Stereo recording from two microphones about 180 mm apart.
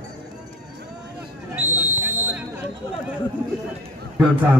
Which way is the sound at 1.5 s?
10° right (ahead or behind).